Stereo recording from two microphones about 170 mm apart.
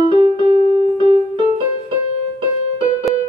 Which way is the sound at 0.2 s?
30° right (ahead or behind).